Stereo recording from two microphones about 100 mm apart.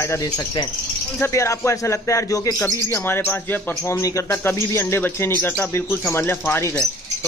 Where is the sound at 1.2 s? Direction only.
30° left (ahead or behind).